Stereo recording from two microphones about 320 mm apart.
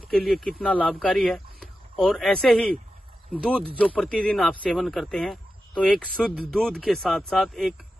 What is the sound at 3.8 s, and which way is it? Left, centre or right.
Speech, centre.